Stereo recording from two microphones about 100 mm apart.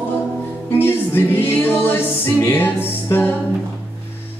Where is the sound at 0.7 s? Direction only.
20° left (ahead or behind).